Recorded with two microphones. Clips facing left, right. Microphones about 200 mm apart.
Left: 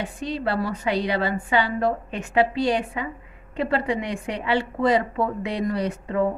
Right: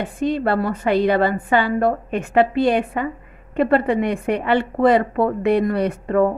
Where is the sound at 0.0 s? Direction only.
50° right (ahead or behind).